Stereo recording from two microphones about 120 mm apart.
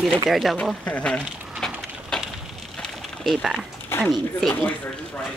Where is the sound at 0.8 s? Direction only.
10° left (ahead or behind).